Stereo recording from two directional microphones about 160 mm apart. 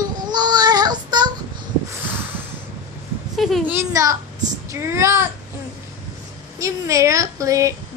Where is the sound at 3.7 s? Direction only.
15° right (ahead or behind).